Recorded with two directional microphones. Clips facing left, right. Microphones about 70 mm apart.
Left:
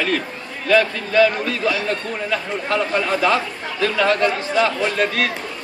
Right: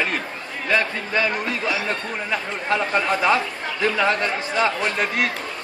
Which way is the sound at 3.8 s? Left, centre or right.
Centre.